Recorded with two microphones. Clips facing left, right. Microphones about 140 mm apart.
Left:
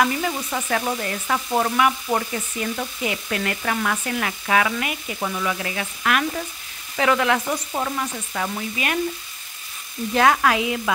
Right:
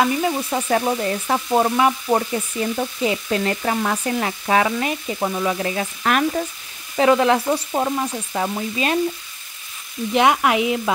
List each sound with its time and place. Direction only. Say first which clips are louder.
0.0 s frying: right 3 dB; 20° right (ahead or behind)
10.1 s frying: right 1 dB; 20° right (ahead or behind)